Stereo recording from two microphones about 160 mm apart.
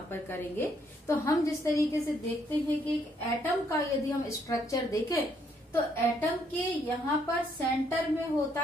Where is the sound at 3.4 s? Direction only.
20° left (ahead or behind).